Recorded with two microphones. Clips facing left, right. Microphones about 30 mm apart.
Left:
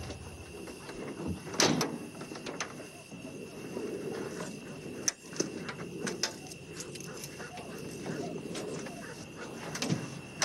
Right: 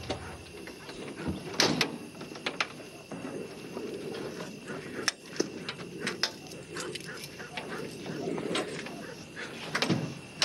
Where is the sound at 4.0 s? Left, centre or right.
Right.